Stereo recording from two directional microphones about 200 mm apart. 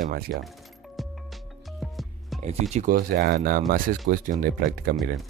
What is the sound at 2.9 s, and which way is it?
Speech, 50° right (ahead or behind).